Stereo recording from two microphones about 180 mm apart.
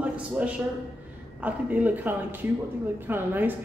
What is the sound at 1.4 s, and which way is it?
Speech, 10° right (ahead or behind).